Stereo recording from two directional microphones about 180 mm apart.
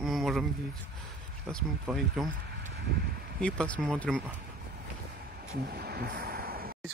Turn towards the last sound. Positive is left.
turn(degrees=-55)  # may be behind; listen again after turning